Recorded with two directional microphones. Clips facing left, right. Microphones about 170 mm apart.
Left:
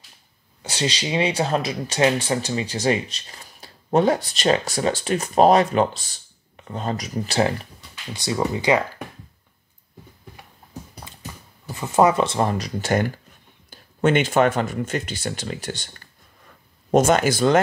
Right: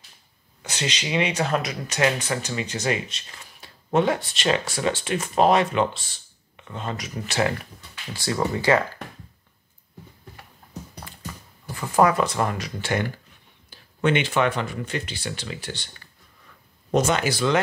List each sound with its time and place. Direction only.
0.6 s speech: 30° left (ahead or behind)
8.1 s speech: 15° left (ahead or behind)
11.7 s speech: 20° left (ahead or behind); by 17.6 s 45° left (ahead or behind)